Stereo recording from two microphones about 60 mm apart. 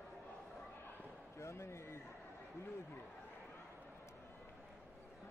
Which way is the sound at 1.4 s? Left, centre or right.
Left.